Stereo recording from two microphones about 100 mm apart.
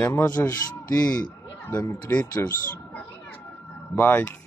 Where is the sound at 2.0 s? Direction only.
15° left (ahead or behind).